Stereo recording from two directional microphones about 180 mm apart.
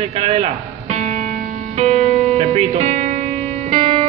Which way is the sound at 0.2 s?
40° right (ahead or behind).